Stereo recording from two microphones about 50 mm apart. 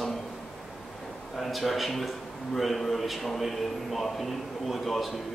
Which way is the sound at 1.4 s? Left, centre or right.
Centre.